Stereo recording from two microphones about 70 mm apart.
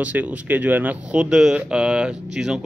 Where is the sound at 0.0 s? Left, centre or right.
Right.